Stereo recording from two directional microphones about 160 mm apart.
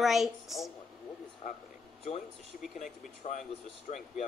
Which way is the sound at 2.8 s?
50° left (ahead or behind).